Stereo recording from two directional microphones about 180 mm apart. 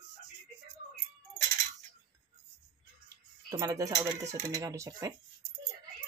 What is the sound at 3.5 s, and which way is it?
Speech, 20° right (ahead or behind).